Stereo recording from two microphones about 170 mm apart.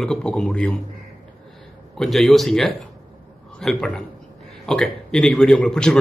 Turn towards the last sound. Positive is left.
turn(degrees=5)  # may be behind; listen again after turning